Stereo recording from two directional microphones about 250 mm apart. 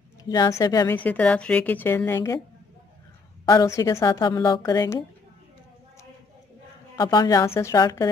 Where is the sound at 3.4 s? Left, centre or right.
Centre.